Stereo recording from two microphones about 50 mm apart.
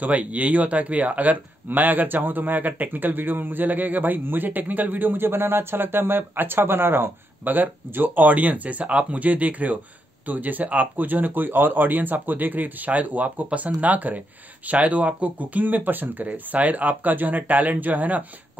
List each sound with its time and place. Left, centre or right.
0.0 s a man's voice: right